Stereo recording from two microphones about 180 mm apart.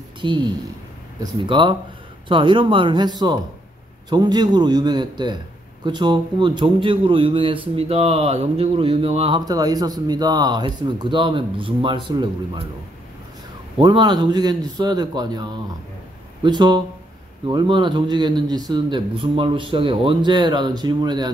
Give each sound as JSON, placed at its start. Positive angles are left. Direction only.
{"t": 0.2, "sound": "a woman's voice", "side_deg": -25}
{"t": 9.4, "sound": "a man's voice", "side_deg": -20}
{"t": 13.7, "sound": "a man's voice", "side_deg": -25}